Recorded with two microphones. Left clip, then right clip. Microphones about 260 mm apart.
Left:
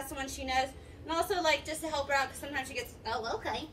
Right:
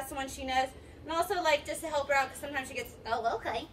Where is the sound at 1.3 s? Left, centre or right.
Centre.